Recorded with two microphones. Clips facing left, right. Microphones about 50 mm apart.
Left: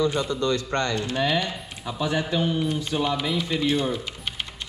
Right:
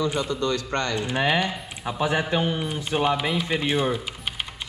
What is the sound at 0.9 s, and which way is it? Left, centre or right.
Speech, right.